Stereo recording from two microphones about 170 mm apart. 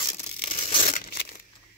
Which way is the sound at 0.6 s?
40° left (ahead or behind).